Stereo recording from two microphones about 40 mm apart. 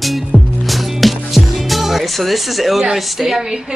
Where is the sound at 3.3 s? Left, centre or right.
Centre.